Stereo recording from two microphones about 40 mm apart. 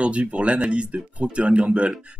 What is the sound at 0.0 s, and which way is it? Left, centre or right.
Speech, right.